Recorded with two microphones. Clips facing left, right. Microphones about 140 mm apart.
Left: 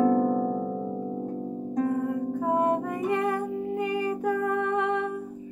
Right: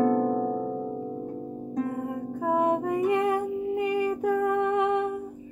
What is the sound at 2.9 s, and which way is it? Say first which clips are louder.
Music: right 3 dB; 15° right (ahead or behind).